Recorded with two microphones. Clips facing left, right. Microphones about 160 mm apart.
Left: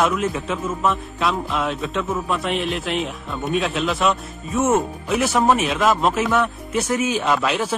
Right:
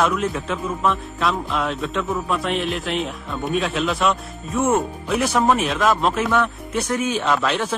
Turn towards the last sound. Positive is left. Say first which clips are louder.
# even
turn(degrees=5)  # may be behind; listen again after turning